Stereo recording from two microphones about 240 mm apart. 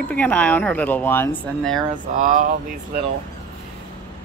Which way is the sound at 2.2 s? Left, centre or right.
Right.